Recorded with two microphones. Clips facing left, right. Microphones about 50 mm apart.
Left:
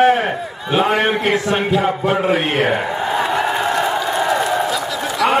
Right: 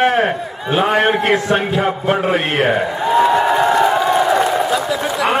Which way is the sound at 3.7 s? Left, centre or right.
Right.